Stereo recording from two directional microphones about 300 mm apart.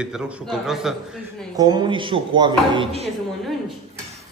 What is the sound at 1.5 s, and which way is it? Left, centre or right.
Speech, centre.